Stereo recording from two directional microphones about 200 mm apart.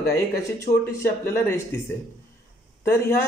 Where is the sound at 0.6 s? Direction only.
15° left (ahead or behind).